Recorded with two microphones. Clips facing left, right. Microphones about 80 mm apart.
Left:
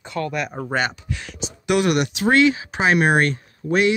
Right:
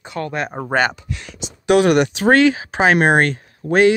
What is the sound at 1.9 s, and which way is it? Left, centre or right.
Speech, right.